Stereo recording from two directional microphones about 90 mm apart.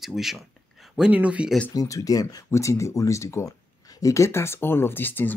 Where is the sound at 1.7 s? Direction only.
40° left (ahead or behind).